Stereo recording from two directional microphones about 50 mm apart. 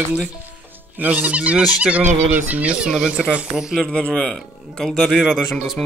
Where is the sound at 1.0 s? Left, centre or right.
Right; by 3.9 s centre.